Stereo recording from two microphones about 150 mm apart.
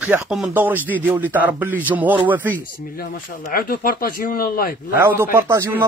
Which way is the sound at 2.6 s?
75° left (ahead or behind).